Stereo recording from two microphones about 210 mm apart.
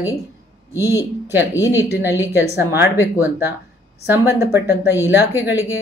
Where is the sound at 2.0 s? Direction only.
10° right (ahead or behind).